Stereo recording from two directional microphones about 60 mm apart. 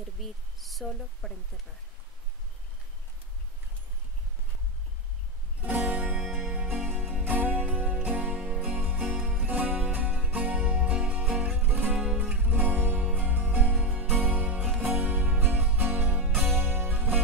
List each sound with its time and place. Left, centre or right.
0.2 s speech: centre
5.6 s music: right
6.2 s music: centre
6.7 s music: right
8.4 s music: centre
8.6 s music: right